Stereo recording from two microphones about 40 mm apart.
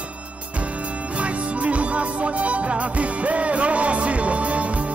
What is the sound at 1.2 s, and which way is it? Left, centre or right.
Music, right.